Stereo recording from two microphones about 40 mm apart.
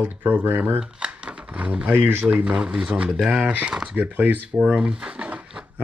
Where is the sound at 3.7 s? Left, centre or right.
Centre.